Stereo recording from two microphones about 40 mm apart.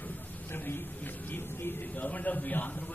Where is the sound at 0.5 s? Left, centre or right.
Left.